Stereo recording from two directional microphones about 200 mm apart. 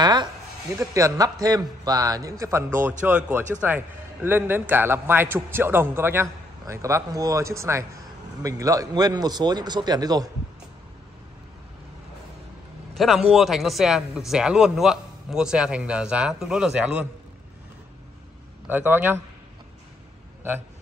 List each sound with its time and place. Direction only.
0.0 s a sound: 20° right (ahead or behind)
0.7 s a man's voice: 15° right (ahead or behind)
12.9 s speech: centre (ahead or behind)
18.7 s a man's voice: 10° right (ahead or behind)